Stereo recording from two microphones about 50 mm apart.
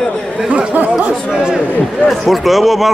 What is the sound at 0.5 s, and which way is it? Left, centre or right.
Speech, right.